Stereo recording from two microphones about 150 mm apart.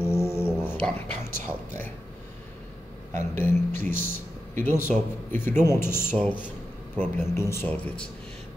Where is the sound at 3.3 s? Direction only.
15° left (ahead or behind).